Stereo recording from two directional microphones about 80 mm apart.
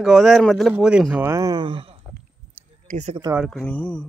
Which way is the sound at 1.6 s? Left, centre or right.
Right.